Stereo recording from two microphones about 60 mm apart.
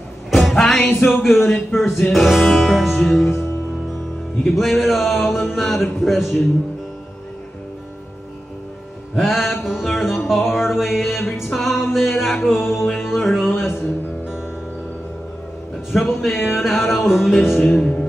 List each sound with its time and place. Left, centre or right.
0.3 s music: centre
1.2 s speech: centre
4.5 s speech: centre
9.1 s speech: centre
9.8 s music: centre
10.5 s speech: centre
12.8 s music: centre
13.5 s music: left
15.9 s speech: centre
17.7 s speech: centre